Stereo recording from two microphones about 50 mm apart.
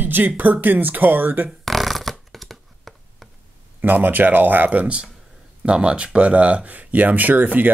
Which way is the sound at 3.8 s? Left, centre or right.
Right.